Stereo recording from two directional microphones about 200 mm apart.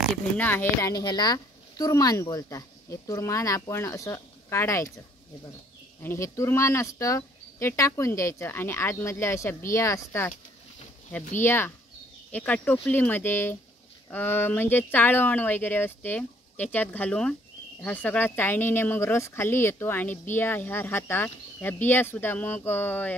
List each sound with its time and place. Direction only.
0.4 s speech: 10° left (ahead or behind)
6.0 s speech: 15° left (ahead or behind)
11.3 s speech: 10° left (ahead or behind)